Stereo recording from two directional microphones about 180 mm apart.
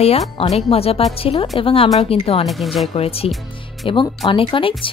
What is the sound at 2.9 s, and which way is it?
Speech, 35° left (ahead or behind).